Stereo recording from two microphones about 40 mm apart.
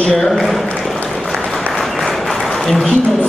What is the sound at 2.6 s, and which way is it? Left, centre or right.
Speech, centre.